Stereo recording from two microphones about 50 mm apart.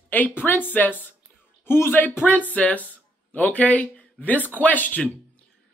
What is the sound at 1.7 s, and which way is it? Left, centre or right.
Speech, left.